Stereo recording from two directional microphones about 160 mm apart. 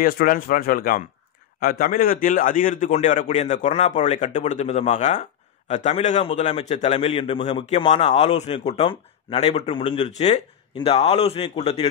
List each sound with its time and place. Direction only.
0.0 s a man's voice: 65° left (ahead or behind); by 11.9 s 40° left (ahead or behind)